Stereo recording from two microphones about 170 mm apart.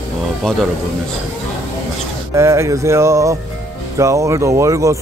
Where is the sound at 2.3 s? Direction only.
15° right (ahead or behind).